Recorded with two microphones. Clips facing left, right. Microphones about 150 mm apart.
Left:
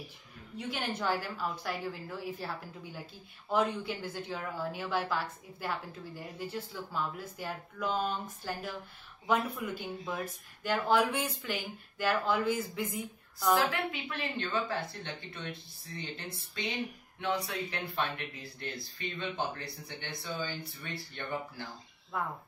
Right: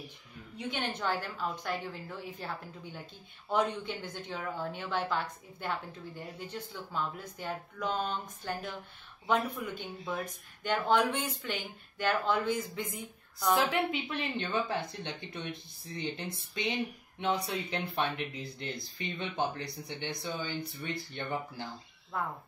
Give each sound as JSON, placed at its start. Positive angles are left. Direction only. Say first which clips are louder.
{"t": 0.6, "sound": "a woman's voice", "louder": "even", "side_deg": 5}
{"t": 13.6, "sound": "speech", "louder": "right 2 dB", "side_deg": -20}
{"t": 17.2, "sound": "speech", "louder": "right 1 dB", "side_deg": -20}
{"t": 22.1, "sound": "a woman's voice", "louder": "even", "side_deg": 5}